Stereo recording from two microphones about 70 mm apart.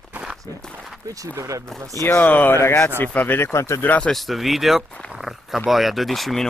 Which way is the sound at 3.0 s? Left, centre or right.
Left.